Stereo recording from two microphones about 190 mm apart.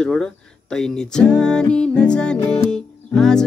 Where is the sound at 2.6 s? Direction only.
5° left (ahead or behind).